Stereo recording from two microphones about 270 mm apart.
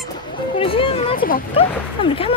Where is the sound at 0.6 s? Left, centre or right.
Centre.